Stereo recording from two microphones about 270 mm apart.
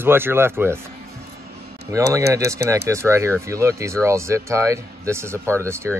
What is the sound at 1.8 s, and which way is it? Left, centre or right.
Speech, centre.